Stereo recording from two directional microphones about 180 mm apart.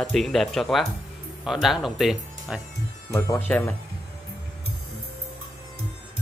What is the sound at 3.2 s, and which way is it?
Speech, 10° left (ahead or behind).